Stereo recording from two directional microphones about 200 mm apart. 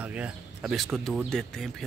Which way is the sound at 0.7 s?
Centre (ahead or behind).